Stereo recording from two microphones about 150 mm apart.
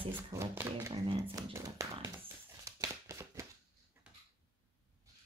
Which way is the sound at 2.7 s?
20° right (ahead or behind).